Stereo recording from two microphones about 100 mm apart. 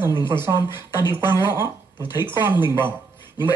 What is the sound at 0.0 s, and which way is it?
Speech, 25° right (ahead or behind).